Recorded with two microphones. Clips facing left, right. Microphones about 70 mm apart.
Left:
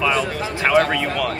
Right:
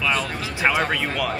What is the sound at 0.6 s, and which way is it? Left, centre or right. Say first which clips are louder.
Speech: left 4 dB; centre.